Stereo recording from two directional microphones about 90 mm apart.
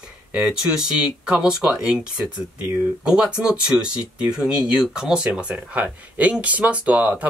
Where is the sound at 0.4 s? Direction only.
5° right (ahead or behind).